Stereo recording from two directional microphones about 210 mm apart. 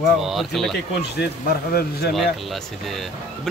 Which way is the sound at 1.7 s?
50° left (ahead or behind).